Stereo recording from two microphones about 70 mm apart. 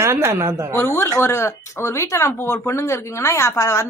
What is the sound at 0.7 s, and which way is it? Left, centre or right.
A woman's voice, left.